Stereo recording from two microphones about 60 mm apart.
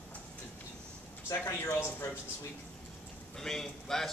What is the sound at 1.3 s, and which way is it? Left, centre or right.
Speech, left.